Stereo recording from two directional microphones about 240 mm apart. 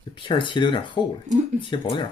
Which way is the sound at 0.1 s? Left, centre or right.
Centre.